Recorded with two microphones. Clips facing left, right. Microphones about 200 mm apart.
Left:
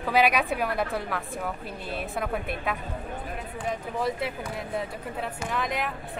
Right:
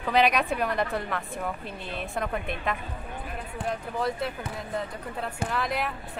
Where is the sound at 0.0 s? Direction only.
5° left (ahead or behind).